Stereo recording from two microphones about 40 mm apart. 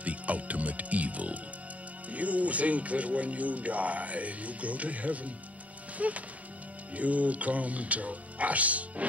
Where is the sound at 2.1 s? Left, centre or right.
Right.